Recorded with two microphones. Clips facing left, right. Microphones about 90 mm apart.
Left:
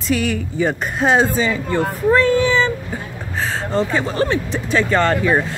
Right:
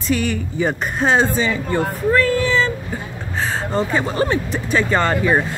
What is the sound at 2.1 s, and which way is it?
Child singing, 20° left (ahead or behind).